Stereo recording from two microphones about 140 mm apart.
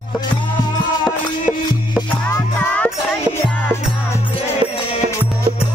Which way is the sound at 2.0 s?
15° left (ahead or behind).